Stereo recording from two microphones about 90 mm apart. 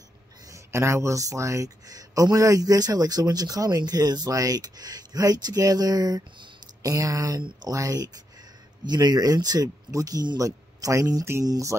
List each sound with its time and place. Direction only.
0.5 s speech: 30° right (ahead or behind)